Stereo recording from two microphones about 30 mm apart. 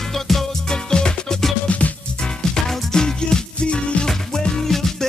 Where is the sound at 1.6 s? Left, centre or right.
Left.